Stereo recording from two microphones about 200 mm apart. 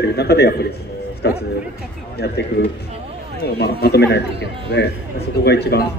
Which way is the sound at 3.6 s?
55° left (ahead or behind).